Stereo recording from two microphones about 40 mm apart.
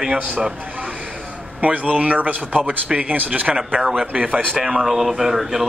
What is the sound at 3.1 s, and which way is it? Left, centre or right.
Speech, right.